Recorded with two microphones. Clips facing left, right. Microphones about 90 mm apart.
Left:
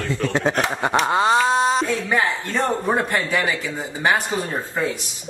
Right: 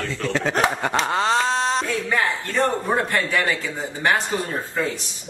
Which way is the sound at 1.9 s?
20° left (ahead or behind).